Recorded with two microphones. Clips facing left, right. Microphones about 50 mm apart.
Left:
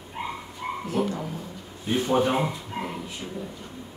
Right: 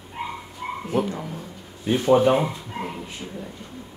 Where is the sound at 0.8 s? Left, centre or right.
Right.